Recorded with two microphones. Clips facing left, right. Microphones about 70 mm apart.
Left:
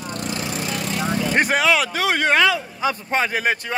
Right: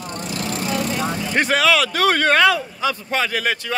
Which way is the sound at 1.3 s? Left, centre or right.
Centre.